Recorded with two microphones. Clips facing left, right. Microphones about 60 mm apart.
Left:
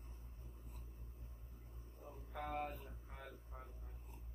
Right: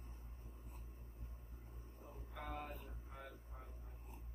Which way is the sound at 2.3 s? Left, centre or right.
Left.